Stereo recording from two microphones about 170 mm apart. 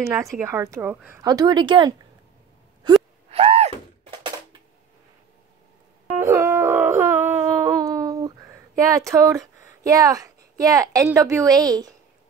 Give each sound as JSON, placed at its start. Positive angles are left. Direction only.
{"t": 0.0, "sound": "speech", "side_deg": -15}
{"t": 2.8, "sound": "wail", "side_deg": -25}
{"t": 3.3, "sound": "a sound", "side_deg": -35}
{"t": 6.2, "sound": "howl", "side_deg": -15}